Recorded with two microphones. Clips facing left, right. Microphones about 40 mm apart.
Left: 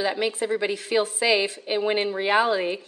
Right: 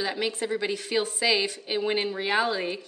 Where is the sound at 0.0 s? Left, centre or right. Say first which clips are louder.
Left 4 dB; centre.